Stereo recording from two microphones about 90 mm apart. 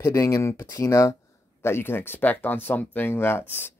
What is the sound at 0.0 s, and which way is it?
Speech, 35° left (ahead or behind).